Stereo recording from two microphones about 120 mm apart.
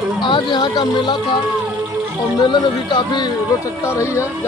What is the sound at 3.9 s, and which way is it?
Speech, 25° left (ahead or behind).